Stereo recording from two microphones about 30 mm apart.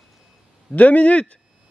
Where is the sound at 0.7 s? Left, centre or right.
Left.